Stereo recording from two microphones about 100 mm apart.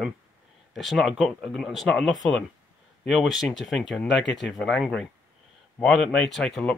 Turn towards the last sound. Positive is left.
turn(degrees=5)  # may be behind; listen again after turning